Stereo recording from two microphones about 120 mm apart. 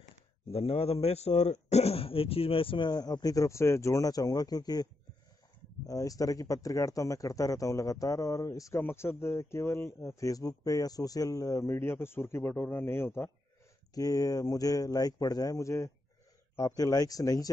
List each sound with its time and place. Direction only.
0.5 s a man's voice: 55° left (ahead or behind); by 4.8 s 35° left (ahead or behind)
5.9 s a man's voice: 30° left (ahead or behind)
13.9 s speech: 30° left (ahead or behind)